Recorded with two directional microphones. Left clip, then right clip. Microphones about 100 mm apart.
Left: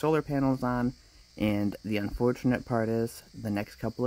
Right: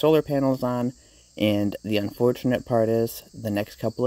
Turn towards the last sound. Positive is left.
turn(degrees=-15)  # may be behind; listen again after turning